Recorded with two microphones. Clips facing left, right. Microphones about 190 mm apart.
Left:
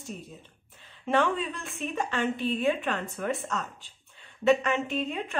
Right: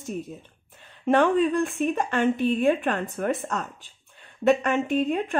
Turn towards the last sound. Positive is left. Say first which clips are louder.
# right 6 dB
turn(degrees=-50)  # may be behind; listen again after turning